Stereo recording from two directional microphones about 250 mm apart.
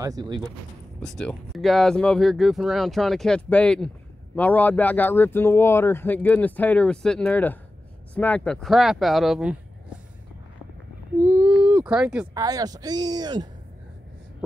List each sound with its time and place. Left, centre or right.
0.0 s speech: centre
1.0 s speech: centre
11.3 s a sound: centre
11.8 s speech: centre
12.4 s speech: centre